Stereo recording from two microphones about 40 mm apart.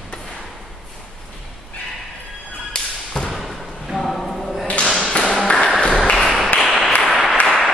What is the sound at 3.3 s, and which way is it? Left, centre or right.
Thump, centre.